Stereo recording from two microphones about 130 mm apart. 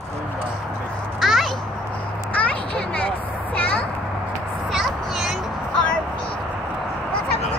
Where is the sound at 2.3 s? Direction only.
10° left (ahead or behind).